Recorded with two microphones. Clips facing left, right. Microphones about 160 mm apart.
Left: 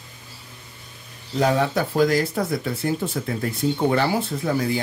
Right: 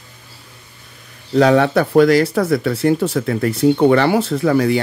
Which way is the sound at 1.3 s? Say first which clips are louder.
Right 8 dB; 75° right (ahead or behind).